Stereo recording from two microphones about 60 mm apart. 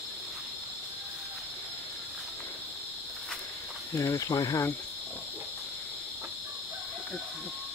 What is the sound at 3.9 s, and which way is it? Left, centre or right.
Speech, left.